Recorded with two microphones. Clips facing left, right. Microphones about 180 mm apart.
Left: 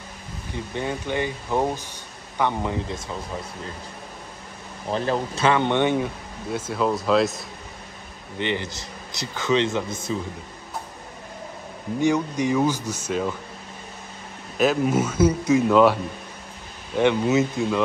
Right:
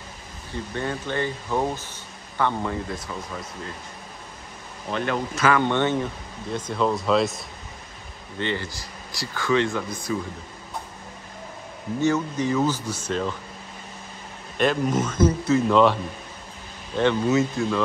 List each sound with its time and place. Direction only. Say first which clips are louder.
0.7 s speech: left 1 dB; 15° left (ahead or behind)
4.9 s speech: left 2 dB; 30° left (ahead or behind); by 7.4 s centre (ahead or behind)
8.4 s speech: left 1 dB; 20° left (ahead or behind)
12.0 s speech: left 1 dB; 15° left (ahead or behind)
12.8 s speech: left 1 dB; 10° right (ahead or behind)
13.1 s speech: left 1 dB; 10° left (ahead or behind)
14.6 s speech: left 2 dB; 5° left (ahead or behind)